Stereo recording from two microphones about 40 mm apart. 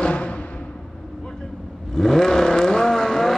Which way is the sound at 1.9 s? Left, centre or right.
Centre.